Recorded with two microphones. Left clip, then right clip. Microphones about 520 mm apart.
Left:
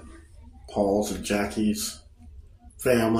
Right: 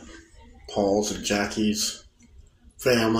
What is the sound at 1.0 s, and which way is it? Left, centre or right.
Speech, left.